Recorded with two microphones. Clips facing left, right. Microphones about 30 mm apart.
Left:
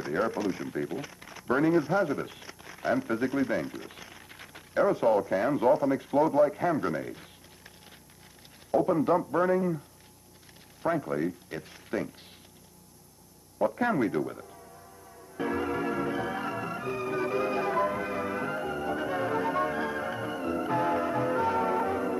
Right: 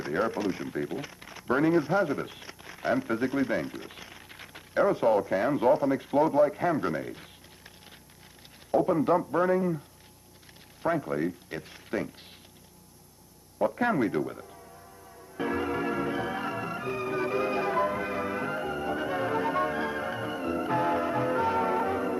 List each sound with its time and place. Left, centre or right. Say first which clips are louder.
0.0 s speech: even; right
8.7 s speech: right 1 dB; centre
11.0 s speech: even; centre
13.6 s speech: right 1 dB; centre
15.3 s organ: even; right